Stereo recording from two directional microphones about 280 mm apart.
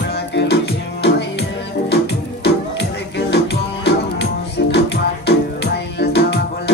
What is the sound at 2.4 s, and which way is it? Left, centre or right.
Music, left.